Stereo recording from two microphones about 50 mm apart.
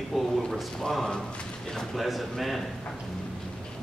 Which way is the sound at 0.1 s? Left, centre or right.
Centre.